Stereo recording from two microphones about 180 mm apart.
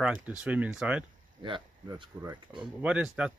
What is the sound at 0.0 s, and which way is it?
Speech, 5° right (ahead or behind).